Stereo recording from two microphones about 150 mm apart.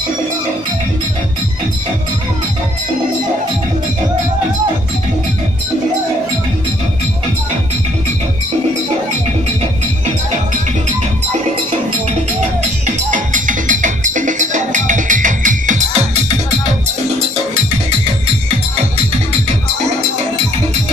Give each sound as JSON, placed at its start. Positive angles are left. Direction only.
{"t": 13.1, "sound": "music", "side_deg": -60}